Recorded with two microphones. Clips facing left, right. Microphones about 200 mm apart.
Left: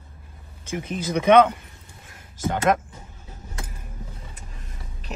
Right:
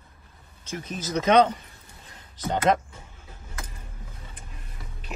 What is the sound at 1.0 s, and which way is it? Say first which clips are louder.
Speech: left 3 dB; 55° left (ahead or behind).